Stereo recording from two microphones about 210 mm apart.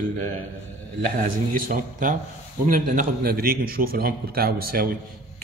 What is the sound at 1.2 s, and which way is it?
A man's voice, 40° right (ahead or behind).